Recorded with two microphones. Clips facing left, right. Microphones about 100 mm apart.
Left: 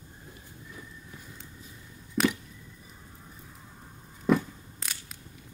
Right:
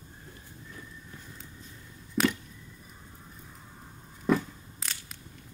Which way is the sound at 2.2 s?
Centre (ahead or behind).